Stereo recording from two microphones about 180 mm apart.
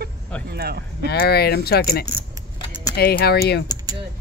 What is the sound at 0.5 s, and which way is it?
Speech, 60° right (ahead or behind).